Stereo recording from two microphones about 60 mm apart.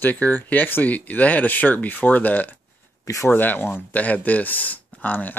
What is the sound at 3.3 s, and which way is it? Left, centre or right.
Speech, left.